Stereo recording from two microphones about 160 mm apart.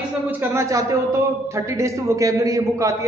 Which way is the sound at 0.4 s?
20° right (ahead or behind).